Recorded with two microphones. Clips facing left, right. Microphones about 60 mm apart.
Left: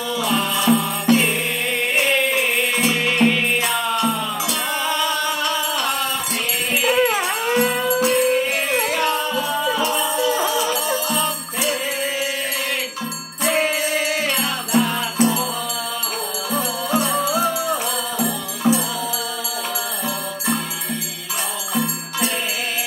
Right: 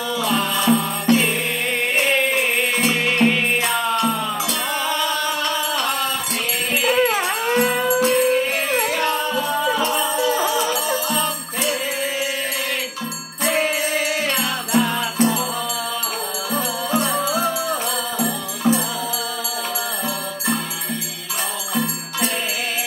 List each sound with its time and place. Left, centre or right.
0.7 s music: centre
2.9 s music: centre
7.0 s a sound: centre
7.4 s music: centre
9.7 s music: right
10.4 s music: centre
13.4 s jingle bell: left
16.5 s music: centre